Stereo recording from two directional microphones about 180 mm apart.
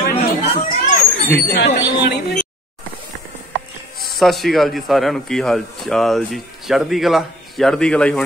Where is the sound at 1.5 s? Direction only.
75° left (ahead or behind).